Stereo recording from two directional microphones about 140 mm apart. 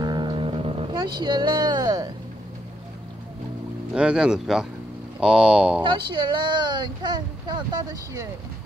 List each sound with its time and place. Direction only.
0.0 s vehicle: 35° right (ahead or behind)
3.9 s speech: 5° right (ahead or behind)
5.8 s speech: 35° right (ahead or behind)